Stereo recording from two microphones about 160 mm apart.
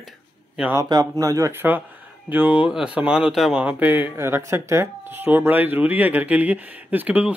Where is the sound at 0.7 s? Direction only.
20° right (ahead or behind).